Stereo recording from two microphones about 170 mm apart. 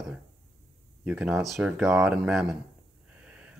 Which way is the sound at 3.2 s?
5° right (ahead or behind).